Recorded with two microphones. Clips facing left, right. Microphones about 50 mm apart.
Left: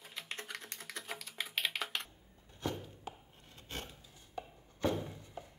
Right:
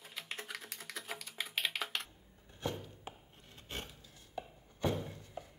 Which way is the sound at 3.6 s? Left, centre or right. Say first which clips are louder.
Even; centre.